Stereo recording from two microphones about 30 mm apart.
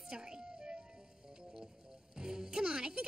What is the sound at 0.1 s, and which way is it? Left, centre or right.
Music, right.